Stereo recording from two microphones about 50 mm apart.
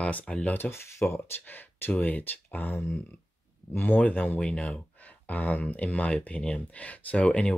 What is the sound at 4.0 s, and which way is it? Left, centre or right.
Speech, left.